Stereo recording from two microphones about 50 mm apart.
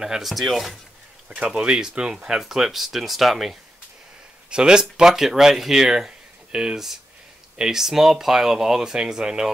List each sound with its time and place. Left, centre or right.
0.0 s speech: centre
1.6 s speech: centre
4.5 s speech: centre